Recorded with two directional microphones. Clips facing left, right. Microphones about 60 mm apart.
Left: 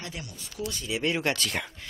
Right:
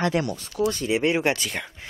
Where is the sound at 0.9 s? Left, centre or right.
Right.